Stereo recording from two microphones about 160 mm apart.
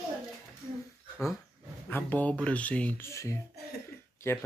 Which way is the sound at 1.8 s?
10° left (ahead or behind).